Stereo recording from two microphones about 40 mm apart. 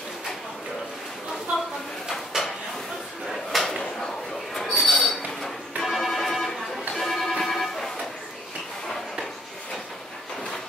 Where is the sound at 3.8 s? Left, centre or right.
Centre.